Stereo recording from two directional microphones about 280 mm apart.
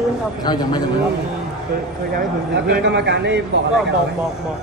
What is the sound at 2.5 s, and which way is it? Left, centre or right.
Speech, right.